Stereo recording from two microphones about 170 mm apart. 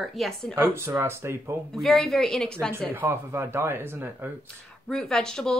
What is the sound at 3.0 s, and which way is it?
Speech, 15° right (ahead or behind).